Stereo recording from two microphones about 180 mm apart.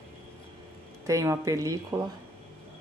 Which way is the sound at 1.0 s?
15° right (ahead or behind).